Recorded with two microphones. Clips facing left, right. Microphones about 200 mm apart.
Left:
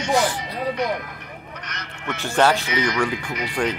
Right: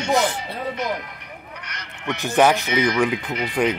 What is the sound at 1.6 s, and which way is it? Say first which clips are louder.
Speech: right 2 dB; 15° right (ahead or behind).